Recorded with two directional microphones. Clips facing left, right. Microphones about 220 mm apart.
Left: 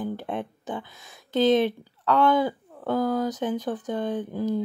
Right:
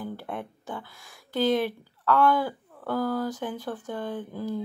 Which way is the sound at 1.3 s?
20° left (ahead or behind).